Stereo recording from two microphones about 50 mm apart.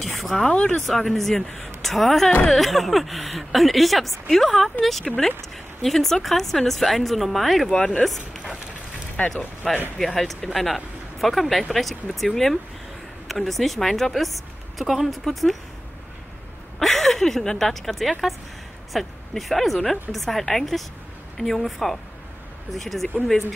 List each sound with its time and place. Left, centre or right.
0.0 s a sound: centre
0.5 s speech: left
0.8 s a woman's voice: centre
7.7 s speech: centre
8.0 s speech: centre
9.2 s speech: left
9.9 s speech: centre
16.8 s a woman's voice: centre